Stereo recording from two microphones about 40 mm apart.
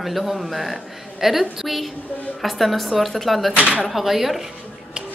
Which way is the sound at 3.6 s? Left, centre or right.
Right.